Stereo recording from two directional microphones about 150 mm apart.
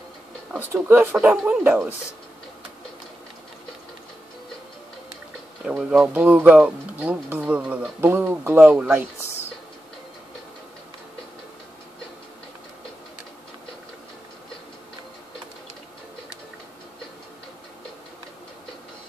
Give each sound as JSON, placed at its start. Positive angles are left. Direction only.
{"t": 0.5, "sound": "speech", "side_deg": -15}
{"t": 5.7, "sound": "speech", "side_deg": -5}
{"t": 9.2, "sound": "a sound", "side_deg": 15}